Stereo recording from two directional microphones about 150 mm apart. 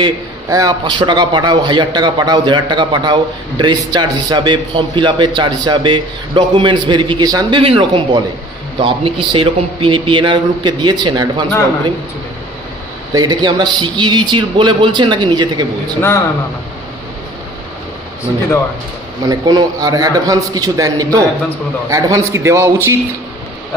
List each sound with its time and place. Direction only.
0.0 s a man's voice: 25° right (ahead or behind)
7.6 s a man's voice: 35° right (ahead or behind)
13.1 s a man's voice: 30° right (ahead or behind)
19.2 s a man's voice: 25° right (ahead or behind)